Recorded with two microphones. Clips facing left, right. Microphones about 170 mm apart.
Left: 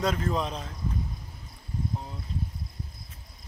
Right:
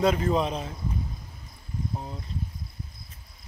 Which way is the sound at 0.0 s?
5° right (ahead or behind).